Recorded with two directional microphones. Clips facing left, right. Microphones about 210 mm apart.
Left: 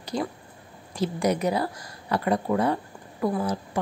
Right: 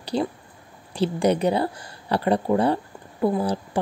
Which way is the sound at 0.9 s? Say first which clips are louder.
Right 4 dB; 30° right (ahead or behind).